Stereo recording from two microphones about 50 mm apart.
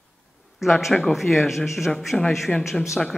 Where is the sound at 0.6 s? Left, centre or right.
Centre.